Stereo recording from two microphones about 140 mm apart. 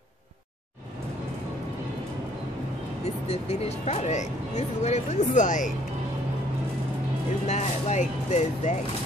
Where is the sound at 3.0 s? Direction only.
50° left (ahead or behind).